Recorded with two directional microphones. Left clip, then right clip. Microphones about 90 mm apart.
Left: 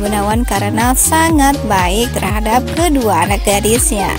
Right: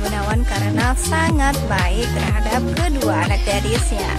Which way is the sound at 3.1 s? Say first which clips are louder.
Left 7 dB; 40° left (ahead or behind).